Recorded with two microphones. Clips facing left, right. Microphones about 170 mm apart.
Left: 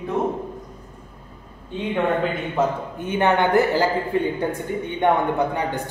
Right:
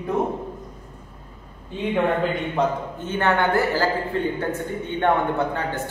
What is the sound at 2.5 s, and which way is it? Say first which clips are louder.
A woman's voice: left 1 dB; 15° left (ahead or behind).